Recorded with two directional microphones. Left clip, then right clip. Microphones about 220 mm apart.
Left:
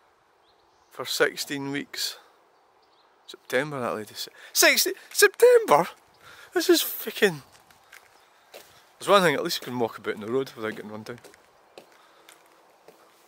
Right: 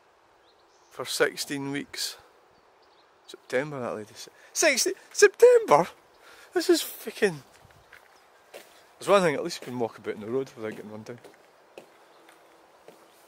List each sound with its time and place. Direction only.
0.9 s speech: 5° left (ahead or behind)
3.3 s speech: 10° left (ahead or behind)
8.5 s a sound: 10° left (ahead or behind)
9.0 s speech: 15° left (ahead or behind)